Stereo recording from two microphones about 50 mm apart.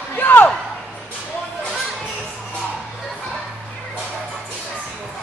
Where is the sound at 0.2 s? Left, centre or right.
Left.